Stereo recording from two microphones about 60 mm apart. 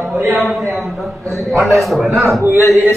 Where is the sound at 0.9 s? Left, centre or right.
Centre.